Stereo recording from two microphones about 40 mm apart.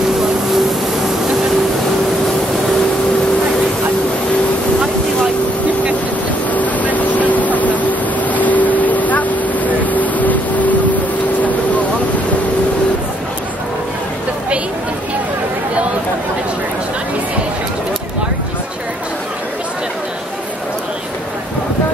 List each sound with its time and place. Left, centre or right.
6.5 s boat: left
9.8 s vehicle: left